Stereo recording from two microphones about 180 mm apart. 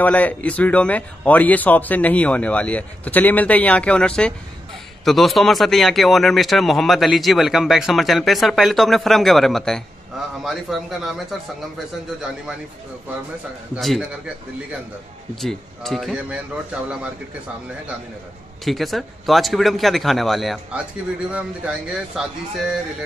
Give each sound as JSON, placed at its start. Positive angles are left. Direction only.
{"t": 0.0, "sound": "speech", "side_deg": 10}
{"t": 13.7, "sound": "speech", "side_deg": 0}
{"t": 15.4, "sound": "speech", "side_deg": 0}
{"t": 18.6, "sound": "speech", "side_deg": 0}